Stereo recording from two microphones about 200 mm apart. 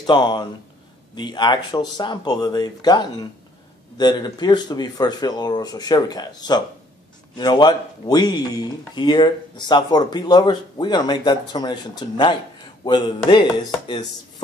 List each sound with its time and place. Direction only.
0.0 s speech: 20° left (ahead or behind)